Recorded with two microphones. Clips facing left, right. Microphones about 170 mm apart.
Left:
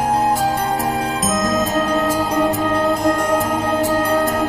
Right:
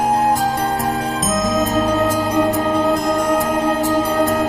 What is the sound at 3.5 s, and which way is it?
Music, 10° right (ahead or behind).